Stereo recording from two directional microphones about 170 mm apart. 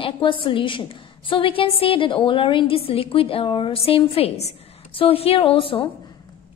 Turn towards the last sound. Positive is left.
turn(degrees=30)  # may be behind; listen again after turning